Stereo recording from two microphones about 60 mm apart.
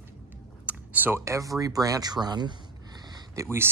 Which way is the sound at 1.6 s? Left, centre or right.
Right.